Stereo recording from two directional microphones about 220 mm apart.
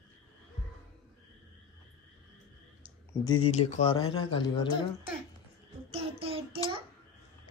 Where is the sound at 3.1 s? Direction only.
20° left (ahead or behind).